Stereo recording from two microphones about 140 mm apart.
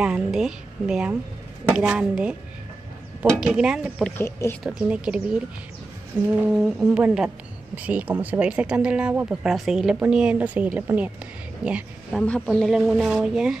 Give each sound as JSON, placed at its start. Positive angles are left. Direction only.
{"t": 0.0, "sound": "speech", "side_deg": -5}
{"t": 3.3, "sound": "speech", "side_deg": -5}
{"t": 4.2, "sound": "speech", "side_deg": 15}
{"t": 4.7, "sound": "speech", "side_deg": -10}
{"t": 6.4, "sound": "speech", "side_deg": -10}
{"t": 12.2, "sound": "speech", "side_deg": 5}